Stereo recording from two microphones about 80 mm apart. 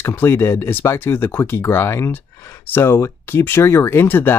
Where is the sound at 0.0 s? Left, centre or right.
Left.